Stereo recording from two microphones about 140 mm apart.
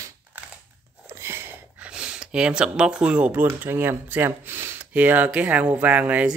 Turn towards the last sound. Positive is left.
turn(degrees=-10)  # may be behind; listen again after turning